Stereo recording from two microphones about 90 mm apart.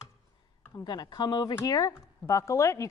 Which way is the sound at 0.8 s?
50° left (ahead or behind).